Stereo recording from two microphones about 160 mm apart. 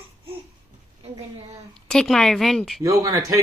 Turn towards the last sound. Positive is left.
turn(degrees=-25)  # may be behind; listen again after turning